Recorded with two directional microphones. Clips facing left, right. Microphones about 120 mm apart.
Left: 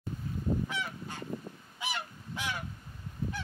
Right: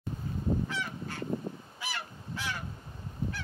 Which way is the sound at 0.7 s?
15° left (ahead or behind).